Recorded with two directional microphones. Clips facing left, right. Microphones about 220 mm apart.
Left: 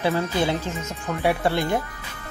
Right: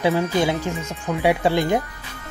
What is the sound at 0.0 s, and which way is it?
Speech, 15° right (ahead or behind).